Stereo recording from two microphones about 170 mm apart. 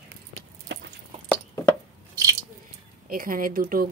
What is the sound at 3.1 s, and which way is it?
Speech, 55° right (ahead or behind).